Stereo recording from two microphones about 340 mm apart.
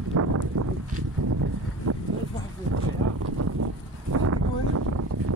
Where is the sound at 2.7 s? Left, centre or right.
Right.